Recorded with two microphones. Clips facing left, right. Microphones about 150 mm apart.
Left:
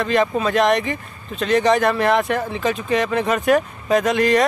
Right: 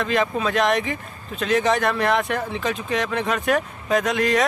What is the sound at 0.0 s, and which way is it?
Speech, centre (ahead or behind).